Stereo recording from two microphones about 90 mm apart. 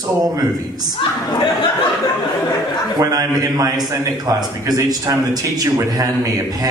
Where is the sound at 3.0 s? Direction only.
40° right (ahead or behind).